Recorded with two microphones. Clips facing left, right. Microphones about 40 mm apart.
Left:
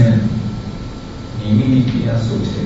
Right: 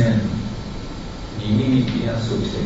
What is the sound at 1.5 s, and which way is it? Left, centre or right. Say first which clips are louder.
Speech: left 4 dB; centre.